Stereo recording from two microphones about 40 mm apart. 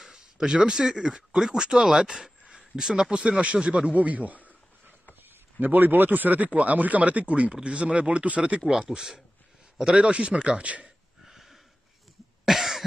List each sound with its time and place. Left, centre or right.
0.0 s speech: centre
3.1 s speech: right
3.9 s speech: right
5.6 s speech: right
8.9 s speech: centre; by 10.9 s right
11.2 s a sound: centre
12.4 s cough: centre